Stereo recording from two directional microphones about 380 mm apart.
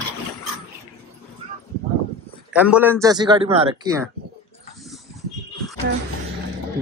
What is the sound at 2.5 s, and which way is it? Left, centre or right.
A man's voice, centre.